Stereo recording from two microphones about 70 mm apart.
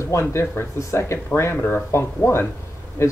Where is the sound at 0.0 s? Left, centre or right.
Left.